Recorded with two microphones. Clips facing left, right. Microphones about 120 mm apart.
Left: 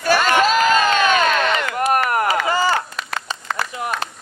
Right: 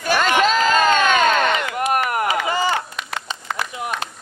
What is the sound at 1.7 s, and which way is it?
Chop, 40° left (ahead or behind).